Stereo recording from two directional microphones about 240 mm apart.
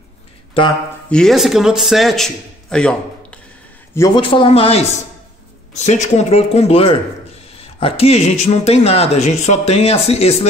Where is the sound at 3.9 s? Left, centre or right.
Centre.